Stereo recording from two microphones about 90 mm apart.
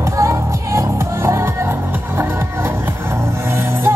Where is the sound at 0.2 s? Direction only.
35° right (ahead or behind).